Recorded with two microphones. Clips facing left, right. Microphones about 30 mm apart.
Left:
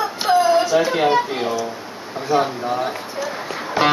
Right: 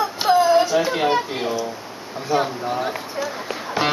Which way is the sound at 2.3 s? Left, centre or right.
Centre.